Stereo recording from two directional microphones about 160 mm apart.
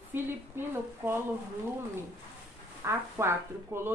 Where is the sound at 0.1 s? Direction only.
15° right (ahead or behind).